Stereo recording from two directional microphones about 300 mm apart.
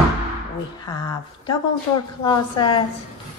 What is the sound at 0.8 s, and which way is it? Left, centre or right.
A woman's voice, centre.